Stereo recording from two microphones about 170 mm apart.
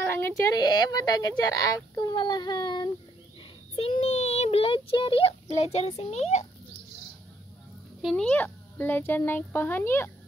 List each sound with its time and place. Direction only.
0.0 s speech: 15° left (ahead or behind); by 6.4 s 40° left (ahead or behind)
8.0 s speech: 5° left (ahead or behind)